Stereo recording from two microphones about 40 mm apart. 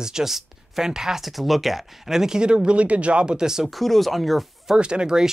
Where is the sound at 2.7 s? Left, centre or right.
Right; by 3.7 s centre.